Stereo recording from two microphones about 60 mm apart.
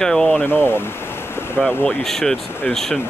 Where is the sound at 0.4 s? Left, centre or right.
Left.